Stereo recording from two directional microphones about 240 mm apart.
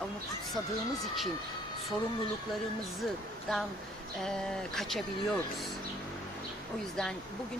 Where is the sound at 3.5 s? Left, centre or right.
Centre.